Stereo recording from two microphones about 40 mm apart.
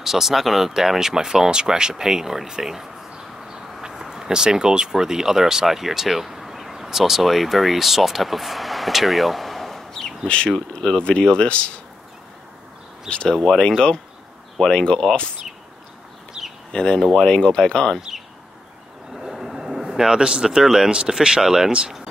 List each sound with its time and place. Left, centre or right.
0.0 s speech: centre
10.2 s speech: left
13.3 s speech: centre
16.4 s a sound: centre
16.7 s speech: left
19.1 s a sound: centre
20.2 s speech: right